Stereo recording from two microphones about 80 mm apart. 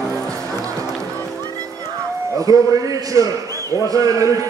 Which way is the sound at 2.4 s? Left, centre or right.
Right.